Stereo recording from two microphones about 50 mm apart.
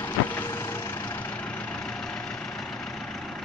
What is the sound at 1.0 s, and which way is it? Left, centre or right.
Vehicle, left.